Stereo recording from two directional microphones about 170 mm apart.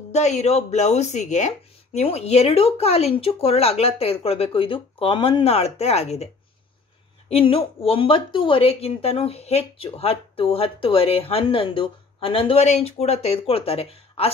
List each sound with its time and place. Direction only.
0.1 s a woman's voice: 40° left (ahead or behind)
7.2 s a woman's voice: 35° left (ahead or behind)